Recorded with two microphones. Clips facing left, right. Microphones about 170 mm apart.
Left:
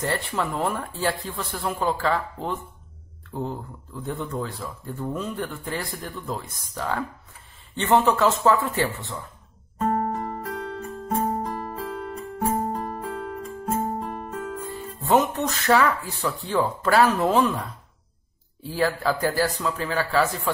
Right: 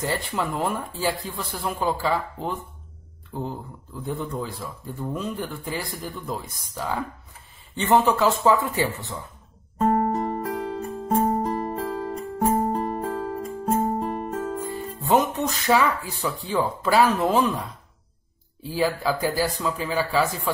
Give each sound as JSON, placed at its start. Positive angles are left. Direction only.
{"t": 0.0, "sound": "speech", "side_deg": -5}
{"t": 9.8, "sound": "music", "side_deg": -35}
{"t": 15.0, "sound": "speech", "side_deg": -5}
{"t": 18.8, "sound": "speech", "side_deg": -5}